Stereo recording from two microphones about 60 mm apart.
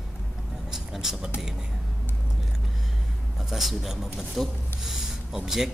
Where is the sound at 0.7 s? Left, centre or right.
Centre.